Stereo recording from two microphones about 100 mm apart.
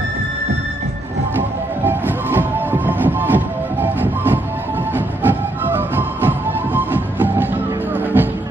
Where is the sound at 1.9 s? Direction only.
20° right (ahead or behind).